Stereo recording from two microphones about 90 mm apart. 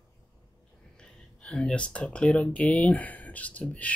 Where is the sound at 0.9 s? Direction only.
10° left (ahead or behind).